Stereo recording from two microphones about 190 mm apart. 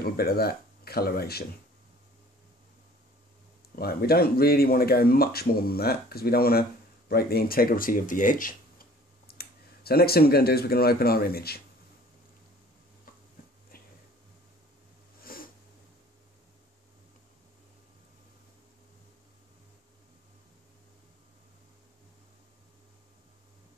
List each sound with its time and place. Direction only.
0.0 s speech: 55° left (ahead or behind)
3.7 s speech: 55° left (ahead or behind)
15.2 s cat: 50° left (ahead or behind)